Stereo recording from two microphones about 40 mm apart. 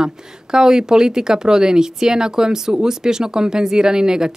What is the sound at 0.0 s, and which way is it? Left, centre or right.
Speech, centre.